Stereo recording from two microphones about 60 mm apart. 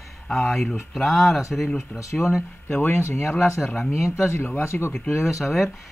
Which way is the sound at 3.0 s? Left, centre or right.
Left.